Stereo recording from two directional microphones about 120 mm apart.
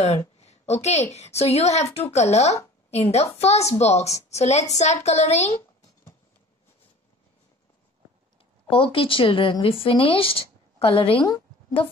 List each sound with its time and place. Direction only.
0.4 s a sound: 65° left (ahead or behind)
1.1 s a woman's voice: 65° left (ahead or behind)
8.6 s speech: 50° left (ahead or behind)